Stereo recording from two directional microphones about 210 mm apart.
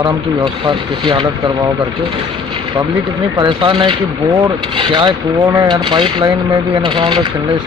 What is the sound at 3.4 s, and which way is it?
Speech, 20° right (ahead or behind).